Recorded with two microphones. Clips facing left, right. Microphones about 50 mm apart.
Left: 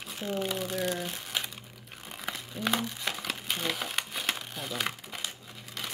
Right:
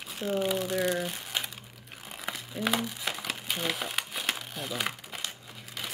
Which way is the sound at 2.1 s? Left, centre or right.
Centre.